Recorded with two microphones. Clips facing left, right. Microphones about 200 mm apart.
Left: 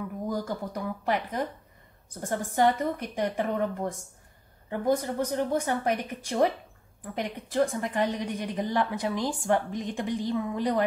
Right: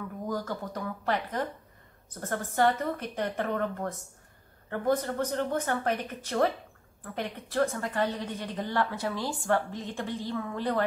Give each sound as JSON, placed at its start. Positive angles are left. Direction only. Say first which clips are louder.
{"t": 0.3, "sound": "a woman's voice", "louder": "left 1 dB", "side_deg": 15}